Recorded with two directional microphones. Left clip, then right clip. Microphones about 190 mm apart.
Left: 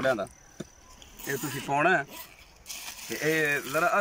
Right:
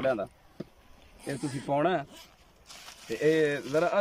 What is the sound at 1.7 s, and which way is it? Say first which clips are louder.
Speech: left 3 dB; 30° right (ahead or behind).